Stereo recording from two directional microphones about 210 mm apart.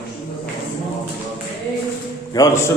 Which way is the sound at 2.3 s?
15° left (ahead or behind).